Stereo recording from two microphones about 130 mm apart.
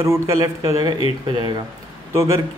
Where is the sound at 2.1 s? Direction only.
20° right (ahead or behind).